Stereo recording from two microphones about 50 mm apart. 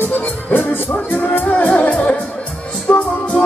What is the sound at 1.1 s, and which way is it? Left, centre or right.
Music, left.